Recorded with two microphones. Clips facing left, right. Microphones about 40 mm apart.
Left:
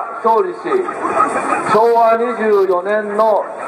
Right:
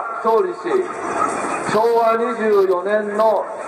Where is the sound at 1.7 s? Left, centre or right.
Centre.